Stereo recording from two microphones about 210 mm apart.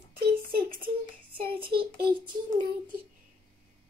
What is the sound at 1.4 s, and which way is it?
Child singing, 25° right (ahead or behind).